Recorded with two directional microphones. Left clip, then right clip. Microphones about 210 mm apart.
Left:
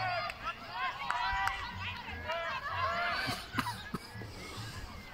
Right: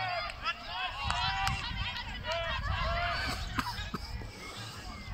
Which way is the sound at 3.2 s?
Centre (ahead or behind).